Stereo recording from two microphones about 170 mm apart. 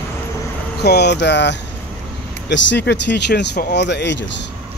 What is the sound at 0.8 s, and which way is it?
Speech, 80° left.